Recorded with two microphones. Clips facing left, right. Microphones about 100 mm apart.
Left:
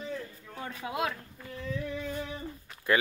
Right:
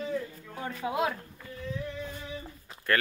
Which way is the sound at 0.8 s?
20° right (ahead or behind).